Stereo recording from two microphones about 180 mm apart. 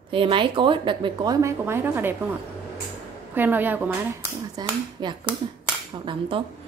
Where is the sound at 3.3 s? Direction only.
10° right (ahead or behind).